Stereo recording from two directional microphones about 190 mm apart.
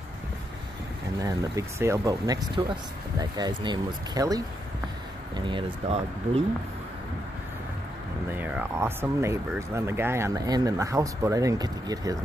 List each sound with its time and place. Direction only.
1.2 s speech: 20° right (ahead or behind)
8.4 s speech: 10° right (ahead or behind)